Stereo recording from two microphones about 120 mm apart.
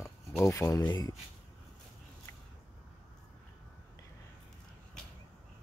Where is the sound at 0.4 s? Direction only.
25° left (ahead or behind).